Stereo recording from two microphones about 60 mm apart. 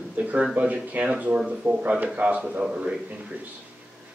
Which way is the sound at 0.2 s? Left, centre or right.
Right.